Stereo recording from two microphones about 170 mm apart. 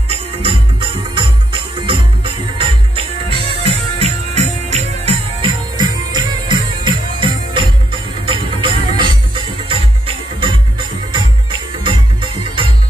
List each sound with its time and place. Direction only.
0.4 s music: 30° right (ahead or behind)
5.8 s music: 25° right (ahead or behind)
11.1 s music: 30° right (ahead or behind)